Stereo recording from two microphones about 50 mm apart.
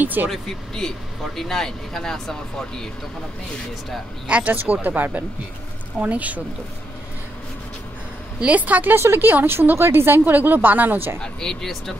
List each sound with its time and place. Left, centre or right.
0.0 s speech: right
0.3 s speech: centre
4.3 s a woman's voice: right
8.4 s a woman's voice: right
8.9 s speech: right
9.2 s a woman's voice: right
11.1 s speech: centre